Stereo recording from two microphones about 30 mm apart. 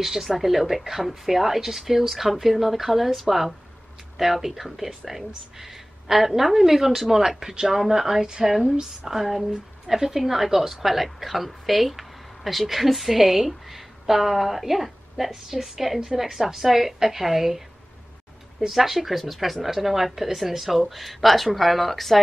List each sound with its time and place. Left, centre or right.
0.0 s a woman's voice: centre
18.7 s a woman's voice: centre
20.9 s speech: centre